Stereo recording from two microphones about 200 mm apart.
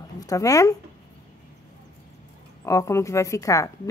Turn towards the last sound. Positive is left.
turn(degrees=15)  # may be behind; listen again after turning